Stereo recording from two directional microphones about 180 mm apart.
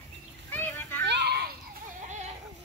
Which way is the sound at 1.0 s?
70° right (ahead or behind).